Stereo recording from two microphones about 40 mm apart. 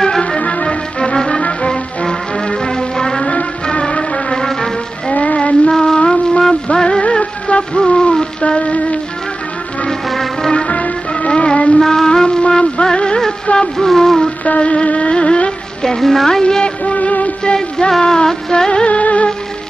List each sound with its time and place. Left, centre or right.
0.4 s music: left
0.9 s music: centre
5.1 s music: left
5.7 s music: centre; by 9.0 s left
10.0 s music: centre
10.5 s music: left
11.8 s music: centre
13.6 s a sound: centre
14.4 s music: left
15.8 s a woman's voice: centre
16.3 s music of bollywood: centre; by 17.3 s left
17.6 s music: centre
18.9 s music: left